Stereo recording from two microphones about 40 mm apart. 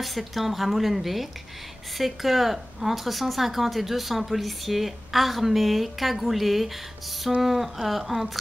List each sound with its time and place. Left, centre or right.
0.0 s a woman's voice: centre